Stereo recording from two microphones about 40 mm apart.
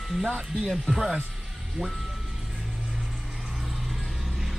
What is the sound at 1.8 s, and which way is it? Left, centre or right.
Speech, right.